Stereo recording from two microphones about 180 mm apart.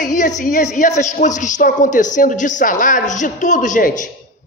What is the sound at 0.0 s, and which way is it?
A woman's voice, 45° left (ahead or behind).